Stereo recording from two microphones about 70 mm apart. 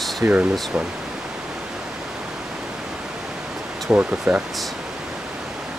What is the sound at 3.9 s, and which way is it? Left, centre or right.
Speech, right.